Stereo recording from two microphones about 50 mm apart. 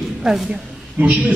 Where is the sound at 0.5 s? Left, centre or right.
Right.